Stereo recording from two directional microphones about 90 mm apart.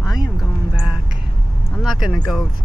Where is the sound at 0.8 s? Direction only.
5° right (ahead or behind).